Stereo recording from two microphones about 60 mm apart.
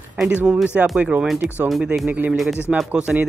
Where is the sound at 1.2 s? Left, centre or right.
Centre.